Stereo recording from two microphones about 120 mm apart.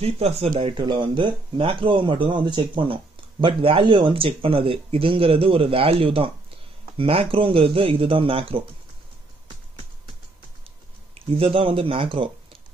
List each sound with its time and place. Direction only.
0.0 s speech: 55° right (ahead or behind)
11.1 s speech: 50° right (ahead or behind)